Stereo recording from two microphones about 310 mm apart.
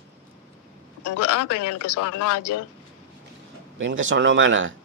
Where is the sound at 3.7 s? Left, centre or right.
Right.